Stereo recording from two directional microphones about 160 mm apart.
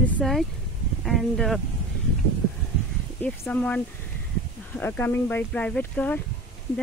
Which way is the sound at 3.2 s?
10° left (ahead or behind).